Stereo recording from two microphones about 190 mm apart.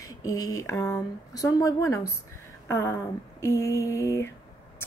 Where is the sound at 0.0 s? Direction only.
20° left (ahead or behind).